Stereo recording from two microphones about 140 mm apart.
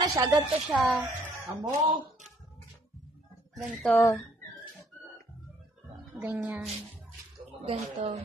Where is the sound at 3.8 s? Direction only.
15° left (ahead or behind).